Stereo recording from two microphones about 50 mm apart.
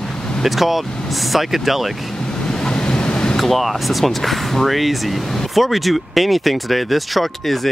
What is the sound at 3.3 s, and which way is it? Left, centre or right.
Speech, centre.